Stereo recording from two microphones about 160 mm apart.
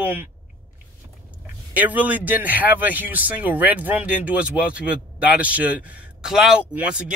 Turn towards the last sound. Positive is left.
turn(degrees=-5)  # may be behind; listen again after turning